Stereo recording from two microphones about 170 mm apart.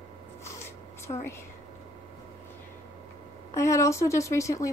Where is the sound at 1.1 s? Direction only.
30° left (ahead or behind).